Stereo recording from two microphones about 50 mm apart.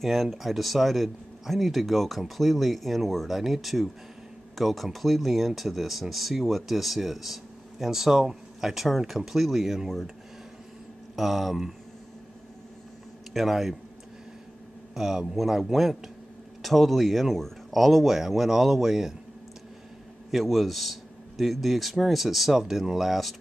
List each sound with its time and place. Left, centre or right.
0.0 s speech: centre
11.1 s speech: centre
13.3 s speech: centre
15.0 s speech: centre
20.2 s speech: centre